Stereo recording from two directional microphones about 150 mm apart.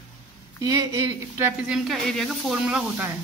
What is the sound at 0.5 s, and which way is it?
Speech, 20° right (ahead or behind).